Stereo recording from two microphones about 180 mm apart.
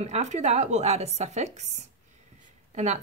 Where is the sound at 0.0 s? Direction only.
40° right (ahead or behind).